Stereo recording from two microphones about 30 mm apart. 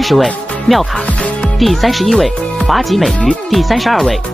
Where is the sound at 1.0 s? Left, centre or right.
Left.